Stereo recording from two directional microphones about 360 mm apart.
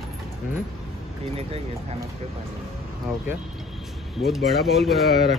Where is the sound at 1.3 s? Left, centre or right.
Centre.